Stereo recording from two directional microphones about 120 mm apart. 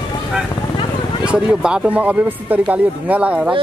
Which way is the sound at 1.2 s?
10° right (ahead or behind).